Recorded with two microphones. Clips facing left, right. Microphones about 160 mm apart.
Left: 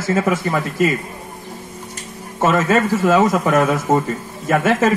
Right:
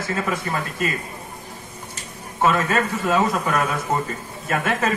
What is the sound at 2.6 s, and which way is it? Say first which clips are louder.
Speech: left 6 dB; 90° left.